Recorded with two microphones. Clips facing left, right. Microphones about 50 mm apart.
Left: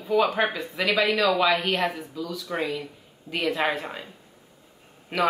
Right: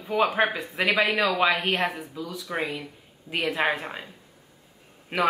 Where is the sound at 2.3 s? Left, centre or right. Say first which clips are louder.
Left 1 dB; centre.